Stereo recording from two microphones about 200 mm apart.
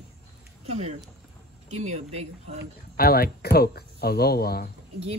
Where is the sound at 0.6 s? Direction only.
30° right (ahead or behind).